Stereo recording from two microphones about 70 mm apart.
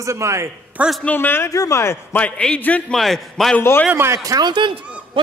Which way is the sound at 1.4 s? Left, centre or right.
Left.